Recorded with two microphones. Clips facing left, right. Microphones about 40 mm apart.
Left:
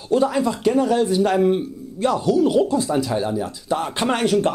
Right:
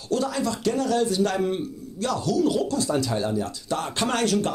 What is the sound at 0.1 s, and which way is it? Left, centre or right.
A man's voice, left.